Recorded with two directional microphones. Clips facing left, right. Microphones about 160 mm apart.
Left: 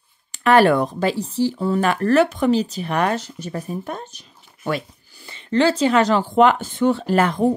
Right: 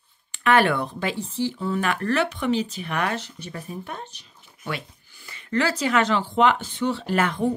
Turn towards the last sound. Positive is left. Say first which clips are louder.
# left 5 dB
turn(degrees=35)  # may be behind; listen again after turning